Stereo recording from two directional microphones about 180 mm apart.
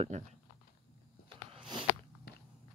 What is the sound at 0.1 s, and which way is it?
Speech, 40° right (ahead or behind).